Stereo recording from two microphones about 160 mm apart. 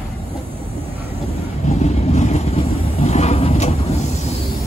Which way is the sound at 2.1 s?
45° left (ahead or behind).